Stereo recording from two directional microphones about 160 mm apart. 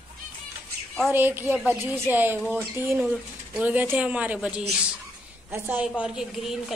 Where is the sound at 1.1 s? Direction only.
15° right (ahead or behind).